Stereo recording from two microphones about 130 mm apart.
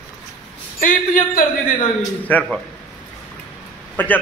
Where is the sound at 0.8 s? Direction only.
90° left.